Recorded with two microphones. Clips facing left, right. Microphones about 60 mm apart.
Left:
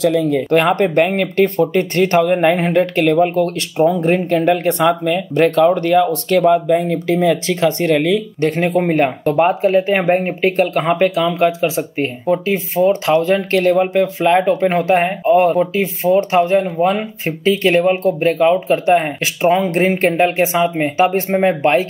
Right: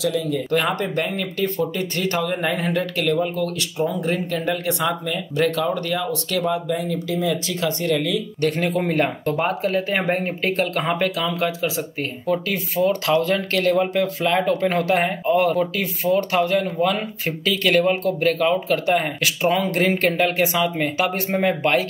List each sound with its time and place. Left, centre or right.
0.0 s speech: left
8.6 s speech: left